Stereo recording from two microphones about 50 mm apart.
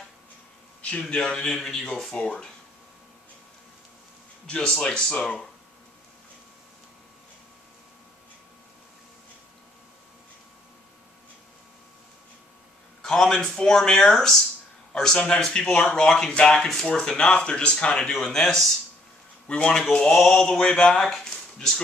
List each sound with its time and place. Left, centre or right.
1.0 s speech: centre
4.5 s speech: centre
13.0 s speech: centre
16.5 s speech: centre
21.3 s a sound: centre